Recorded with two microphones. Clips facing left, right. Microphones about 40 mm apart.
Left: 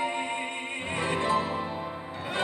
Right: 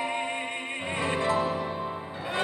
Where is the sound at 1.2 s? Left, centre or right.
Left.